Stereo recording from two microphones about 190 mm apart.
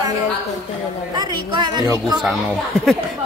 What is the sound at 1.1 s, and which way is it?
A woman's voice, 20° right (ahead or behind).